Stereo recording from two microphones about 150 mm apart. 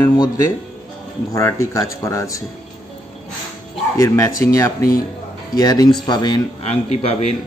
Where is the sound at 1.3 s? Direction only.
20° left (ahead or behind).